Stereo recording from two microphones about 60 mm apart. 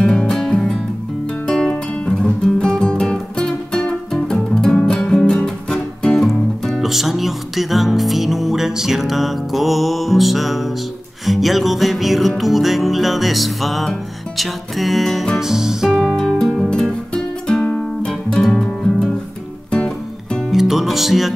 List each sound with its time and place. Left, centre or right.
0.0 s music: centre
6.8 s music: centre
15.9 s music: centre
16.8 s music: centre
20.5 s music: centre